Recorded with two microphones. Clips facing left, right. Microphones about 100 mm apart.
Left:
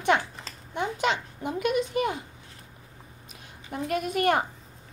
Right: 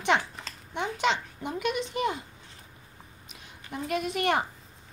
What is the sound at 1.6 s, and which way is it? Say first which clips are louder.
Speech: left 4 dB; 45° left (ahead or behind).